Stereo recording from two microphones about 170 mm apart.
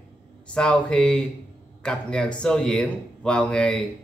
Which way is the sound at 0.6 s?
5° left (ahead or behind).